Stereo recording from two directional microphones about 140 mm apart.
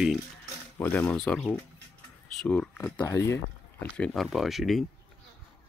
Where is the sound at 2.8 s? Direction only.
20° left (ahead or behind).